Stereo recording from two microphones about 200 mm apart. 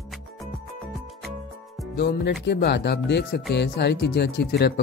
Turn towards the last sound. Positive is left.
turn(degrees=55)  # may be behind; listen again after turning